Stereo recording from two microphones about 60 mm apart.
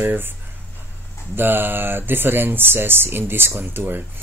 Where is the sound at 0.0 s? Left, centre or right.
Right.